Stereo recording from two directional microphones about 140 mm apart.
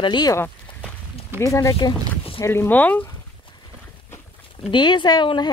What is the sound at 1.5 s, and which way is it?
Speech, 20° left (ahead or behind).